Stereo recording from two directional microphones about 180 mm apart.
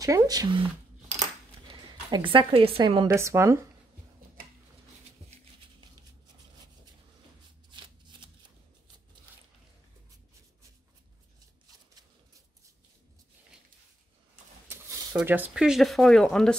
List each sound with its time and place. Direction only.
0.0 s speech: 20° right (ahead or behind)
1.7 s a woman's voice: 25° right (ahead or behind)
7.7 s shuffling cards: 25° right (ahead or behind)
14.7 s a sound: 15° right (ahead or behind)
15.1 s speech: 10° right (ahead or behind)